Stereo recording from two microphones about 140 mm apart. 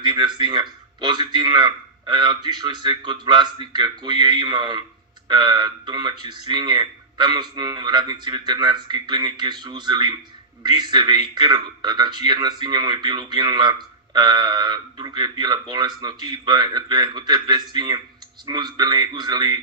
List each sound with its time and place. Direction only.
0.0 s a man's voice: 30° right (ahead or behind)